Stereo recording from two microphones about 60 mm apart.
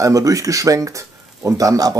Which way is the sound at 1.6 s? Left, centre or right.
Right.